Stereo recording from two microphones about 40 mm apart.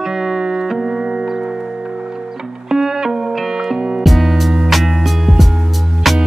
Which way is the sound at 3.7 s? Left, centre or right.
Right.